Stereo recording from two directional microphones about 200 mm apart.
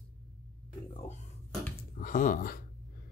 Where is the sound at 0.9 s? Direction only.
35° left (ahead or behind).